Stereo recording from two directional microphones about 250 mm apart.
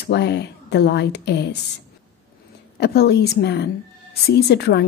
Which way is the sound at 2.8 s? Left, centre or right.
Left.